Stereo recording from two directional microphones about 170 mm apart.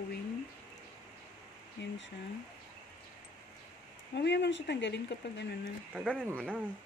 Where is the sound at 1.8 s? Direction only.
80° left.